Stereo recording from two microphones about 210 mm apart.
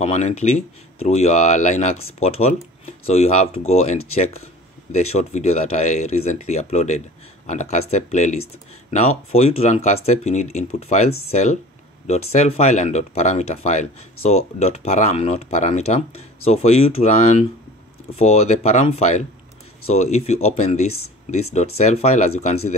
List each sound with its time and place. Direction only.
0.0 s speech: 35° left (ahead or behind)